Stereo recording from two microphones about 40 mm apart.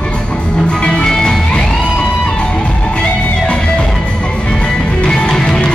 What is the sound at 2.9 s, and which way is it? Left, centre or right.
Music, left.